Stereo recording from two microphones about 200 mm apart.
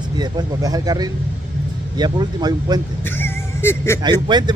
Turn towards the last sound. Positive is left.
turn(degrees=-20)  # may be behind; listen again after turning